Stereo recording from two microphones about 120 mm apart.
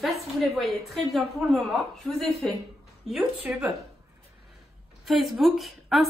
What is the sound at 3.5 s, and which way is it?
Speech, 10° right (ahead or behind).